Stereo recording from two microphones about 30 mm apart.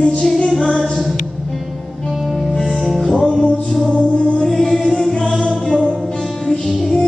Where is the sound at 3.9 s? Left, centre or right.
Left.